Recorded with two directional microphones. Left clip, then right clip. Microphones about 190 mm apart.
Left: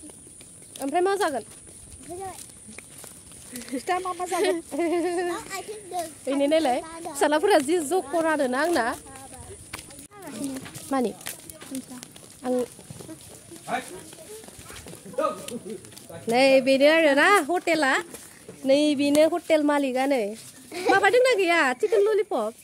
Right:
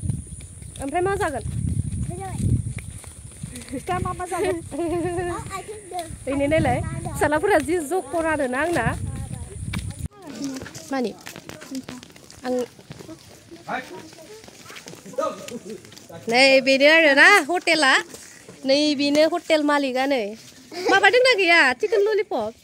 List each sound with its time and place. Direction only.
0.7 s speech: centre (ahead or behind)
3.7 s speech: 5° right (ahead or behind)
4.6 s speech: 5° right (ahead or behind)
10.9 s a sound: 15° left (ahead or behind)
12.4 s speech: 5° left (ahead or behind)
16.3 s speech: 5° left (ahead or behind)